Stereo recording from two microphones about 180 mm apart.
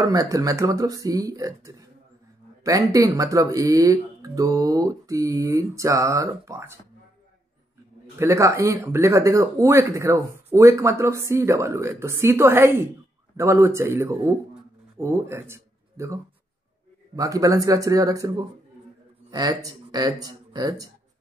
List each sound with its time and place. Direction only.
0.0 s speech: 20° right (ahead or behind)
8.2 s speech: 15° right (ahead or behind)